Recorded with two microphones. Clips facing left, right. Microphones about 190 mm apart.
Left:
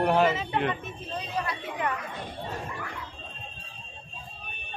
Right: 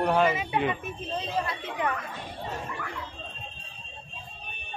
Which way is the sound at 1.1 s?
25° right (ahead or behind).